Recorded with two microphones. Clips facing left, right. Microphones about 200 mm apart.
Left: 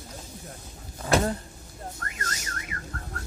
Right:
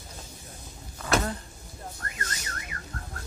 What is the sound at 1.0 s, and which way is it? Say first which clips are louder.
Power windows: left 3 dB; 30° left (ahead or behind).